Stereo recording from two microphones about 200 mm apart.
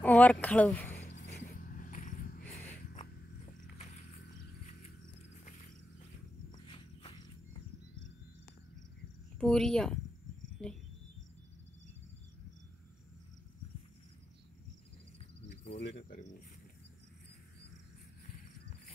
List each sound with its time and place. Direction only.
0.0 s speech: 10° left (ahead or behind)
1.5 s a sound: 45° left (ahead or behind)
6.5 s walk: 25° left (ahead or behind)
9.4 s speech: 5° left (ahead or behind)
10.6 s a sound: 5° left (ahead or behind)
15.1 s cricket: 30° left (ahead or behind)